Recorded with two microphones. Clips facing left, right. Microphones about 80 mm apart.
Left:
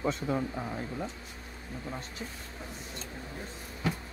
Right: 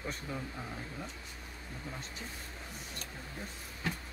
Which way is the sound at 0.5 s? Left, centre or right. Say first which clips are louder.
Left 7 dB; left.